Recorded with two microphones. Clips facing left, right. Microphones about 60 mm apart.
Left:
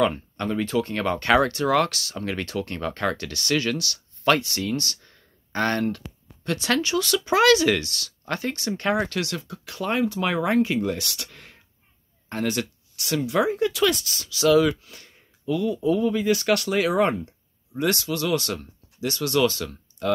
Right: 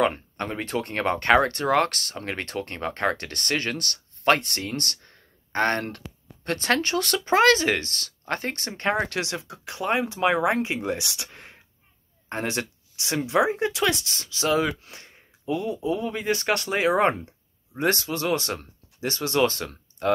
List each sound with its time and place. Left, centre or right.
0.0 s speech: right